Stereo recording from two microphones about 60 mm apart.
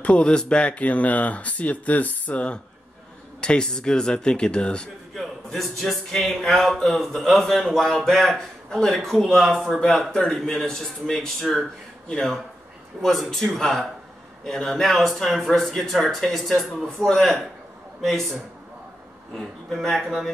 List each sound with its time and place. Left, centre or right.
0.0 s speech: centre
5.1 s speech: centre